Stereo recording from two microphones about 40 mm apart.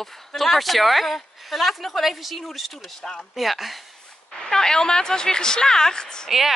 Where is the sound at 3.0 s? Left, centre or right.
Centre.